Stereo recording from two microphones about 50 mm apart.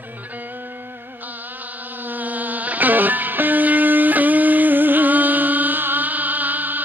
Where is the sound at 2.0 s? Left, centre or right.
Right.